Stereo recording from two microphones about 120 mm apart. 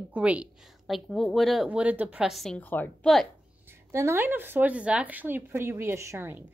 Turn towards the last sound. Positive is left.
turn(degrees=-20)  # may be behind; listen again after turning